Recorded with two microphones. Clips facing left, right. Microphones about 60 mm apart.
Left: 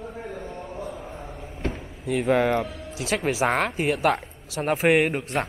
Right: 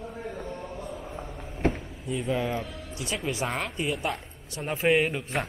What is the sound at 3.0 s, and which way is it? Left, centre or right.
Speech, left.